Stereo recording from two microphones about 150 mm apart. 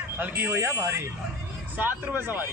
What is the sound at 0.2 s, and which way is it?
A man's voice, 15° right (ahead or behind).